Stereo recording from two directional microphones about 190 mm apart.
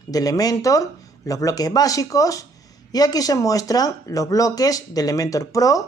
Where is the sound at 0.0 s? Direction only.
20° left (ahead or behind).